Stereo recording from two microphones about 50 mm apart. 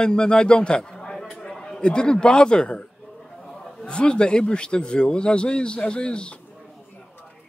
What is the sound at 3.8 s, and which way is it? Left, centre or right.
Speech, centre.